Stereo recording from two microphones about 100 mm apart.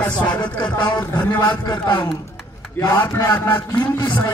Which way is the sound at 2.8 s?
35° left (ahead or behind).